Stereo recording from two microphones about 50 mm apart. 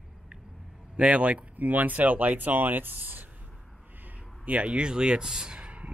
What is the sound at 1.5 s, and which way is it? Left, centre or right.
Speech, right.